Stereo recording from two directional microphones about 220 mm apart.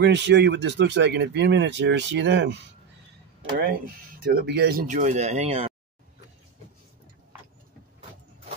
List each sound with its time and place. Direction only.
0.0 s speech: 50° right (ahead or behind)
3.5 s speech: 40° right (ahead or behind)